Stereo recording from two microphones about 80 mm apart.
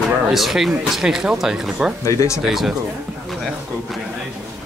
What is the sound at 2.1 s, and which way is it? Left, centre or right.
Speech, left.